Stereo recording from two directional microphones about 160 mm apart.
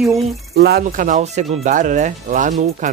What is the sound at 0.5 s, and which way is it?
Speech, 80° right.